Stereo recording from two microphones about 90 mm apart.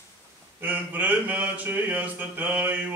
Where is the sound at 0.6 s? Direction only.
20° right (ahead or behind).